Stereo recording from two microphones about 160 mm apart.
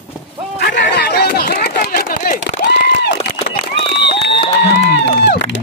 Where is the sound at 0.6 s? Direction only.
90° left.